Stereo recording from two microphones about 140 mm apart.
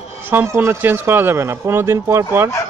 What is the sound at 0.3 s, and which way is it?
Speech, 15° right (ahead or behind).